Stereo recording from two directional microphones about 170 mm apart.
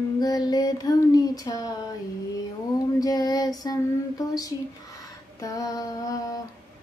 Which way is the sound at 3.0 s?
20° left (ahead or behind).